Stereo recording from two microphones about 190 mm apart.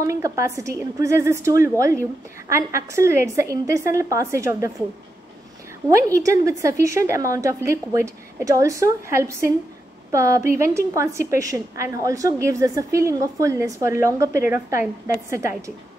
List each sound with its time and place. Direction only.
0.0 s a woman's voice: 15° right (ahead or behind)
5.9 s a woman's voice: 15° right (ahead or behind)